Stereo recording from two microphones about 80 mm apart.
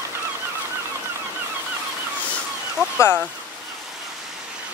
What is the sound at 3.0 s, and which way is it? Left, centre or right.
Speech, left.